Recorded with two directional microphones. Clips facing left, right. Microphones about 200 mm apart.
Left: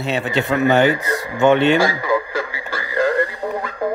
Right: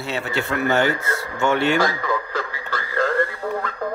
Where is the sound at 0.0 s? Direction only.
20° left (ahead or behind).